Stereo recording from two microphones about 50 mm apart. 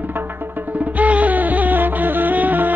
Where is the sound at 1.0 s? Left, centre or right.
Right.